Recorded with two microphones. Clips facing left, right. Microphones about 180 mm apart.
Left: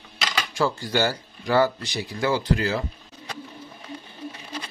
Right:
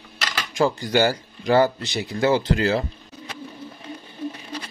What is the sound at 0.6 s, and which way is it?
Speech, 20° right (ahead or behind).